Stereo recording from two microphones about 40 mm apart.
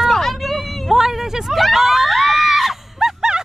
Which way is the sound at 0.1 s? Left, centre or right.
Centre.